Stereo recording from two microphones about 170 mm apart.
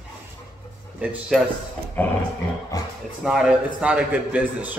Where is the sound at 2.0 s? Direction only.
10° left (ahead or behind).